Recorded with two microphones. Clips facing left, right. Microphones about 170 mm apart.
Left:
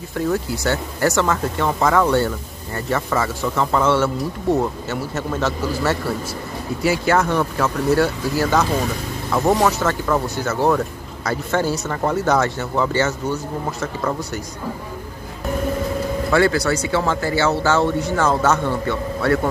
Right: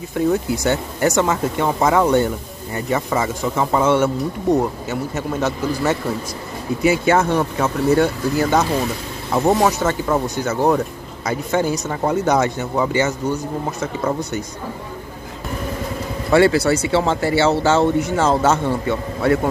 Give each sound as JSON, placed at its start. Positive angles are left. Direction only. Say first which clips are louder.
{"t": 0.1, "sound": "speech", "louder": "right 3 dB", "side_deg": -20}
{"t": 16.3, "sound": "speech", "louder": "right 4 dB", "side_deg": -25}